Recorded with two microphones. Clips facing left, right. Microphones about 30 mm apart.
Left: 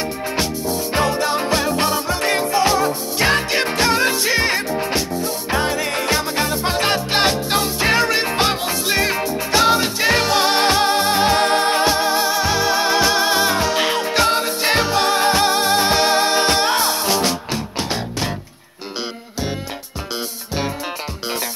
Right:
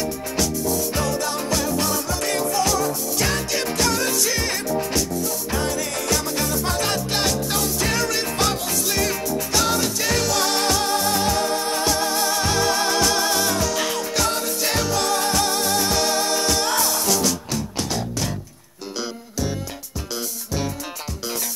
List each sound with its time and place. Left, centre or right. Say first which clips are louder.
0.0 s music: left 2 dB; left